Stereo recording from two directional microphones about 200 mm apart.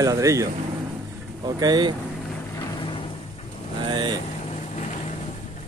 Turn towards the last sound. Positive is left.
turn(degrees=-20)  # may be behind; listen again after turning